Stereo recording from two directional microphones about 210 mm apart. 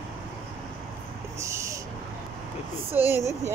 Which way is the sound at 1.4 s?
15° right (ahead or behind).